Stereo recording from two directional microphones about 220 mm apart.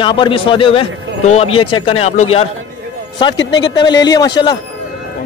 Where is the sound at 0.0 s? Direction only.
20° left (ahead or behind).